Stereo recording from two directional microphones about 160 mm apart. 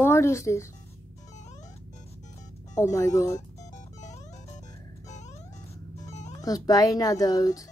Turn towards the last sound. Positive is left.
turn(degrees=20)  # may be behind; listen again after turning